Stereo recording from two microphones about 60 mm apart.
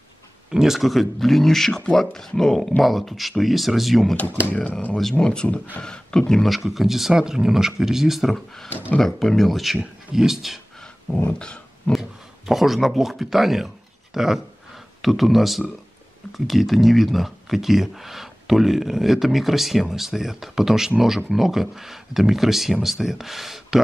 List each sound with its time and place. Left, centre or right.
0.5 s speech: centre
4.5 s speech: left
5.2 s speech: centre
8.9 s speech: centre
11.2 s speech: centre
11.9 s speech: centre